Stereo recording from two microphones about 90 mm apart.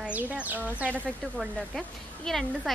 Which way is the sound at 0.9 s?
15° left (ahead or behind).